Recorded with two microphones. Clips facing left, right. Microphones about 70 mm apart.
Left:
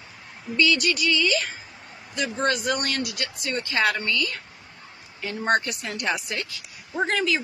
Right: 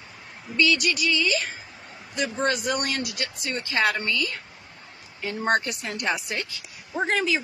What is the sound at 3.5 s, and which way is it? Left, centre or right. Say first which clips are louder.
Music: even; centre.